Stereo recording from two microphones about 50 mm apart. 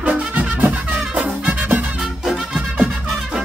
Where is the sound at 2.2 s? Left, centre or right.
Centre.